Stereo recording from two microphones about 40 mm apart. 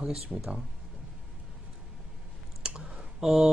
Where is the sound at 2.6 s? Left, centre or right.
Right.